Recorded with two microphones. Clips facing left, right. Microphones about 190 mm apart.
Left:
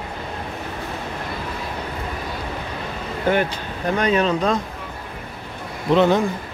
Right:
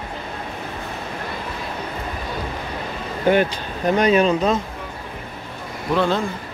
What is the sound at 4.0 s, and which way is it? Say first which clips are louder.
Speech: right 2 dB; 15° right (ahead or behind).